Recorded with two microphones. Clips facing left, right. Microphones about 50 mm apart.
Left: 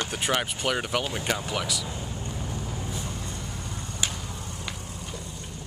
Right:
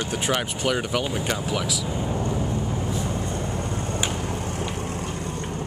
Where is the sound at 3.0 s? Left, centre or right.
Right.